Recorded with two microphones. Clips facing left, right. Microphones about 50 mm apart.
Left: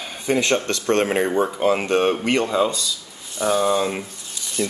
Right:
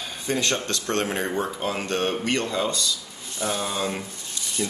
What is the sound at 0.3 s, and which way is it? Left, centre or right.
Speech, left.